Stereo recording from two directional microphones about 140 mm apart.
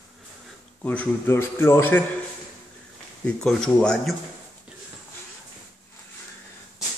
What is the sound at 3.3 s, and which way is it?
Speech, 5° left (ahead or behind).